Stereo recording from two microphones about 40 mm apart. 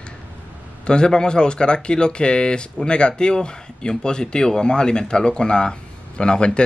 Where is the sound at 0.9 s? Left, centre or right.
Centre.